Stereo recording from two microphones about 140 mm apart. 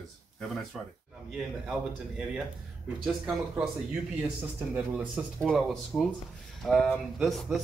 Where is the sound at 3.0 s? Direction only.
5° right (ahead or behind).